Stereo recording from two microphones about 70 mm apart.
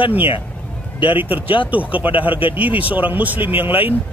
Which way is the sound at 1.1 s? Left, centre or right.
Right.